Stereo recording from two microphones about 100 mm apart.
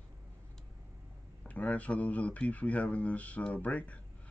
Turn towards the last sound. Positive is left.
turn(degrees=15)  # may be behind; listen again after turning